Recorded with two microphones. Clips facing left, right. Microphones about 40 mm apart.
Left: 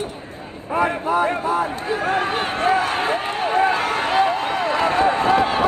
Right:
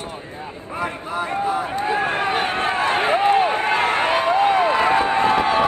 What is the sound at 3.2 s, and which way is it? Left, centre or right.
Run, centre.